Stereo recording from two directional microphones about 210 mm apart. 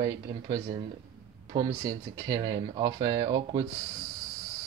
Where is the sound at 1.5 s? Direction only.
20° right (ahead or behind).